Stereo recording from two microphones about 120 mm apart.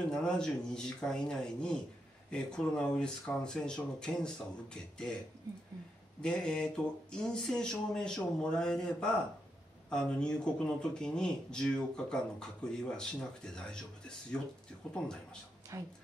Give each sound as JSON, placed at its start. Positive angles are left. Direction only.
{"t": 0.1, "sound": "speech", "side_deg": 5}
{"t": 6.2, "sound": "speech", "side_deg": 5}
{"t": 15.7, "sound": "a woman's voice", "side_deg": -25}